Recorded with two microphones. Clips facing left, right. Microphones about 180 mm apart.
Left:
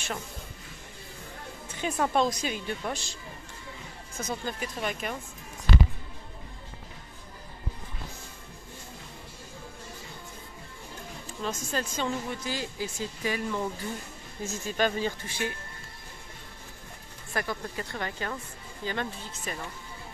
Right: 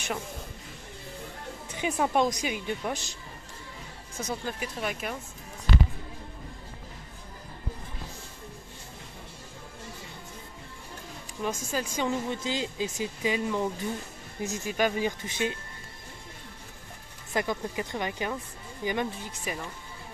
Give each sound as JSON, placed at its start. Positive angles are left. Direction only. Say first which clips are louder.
{"t": 1.8, "sound": "speech", "louder": "right 1 dB", "side_deg": -15}
{"t": 4.2, "sound": "speech", "louder": "even", "side_deg": -10}
{"t": 11.4, "sound": "speech", "louder": "right 1 dB", "side_deg": -10}
{"t": 17.3, "sound": "speech", "louder": "right 3 dB", "side_deg": -20}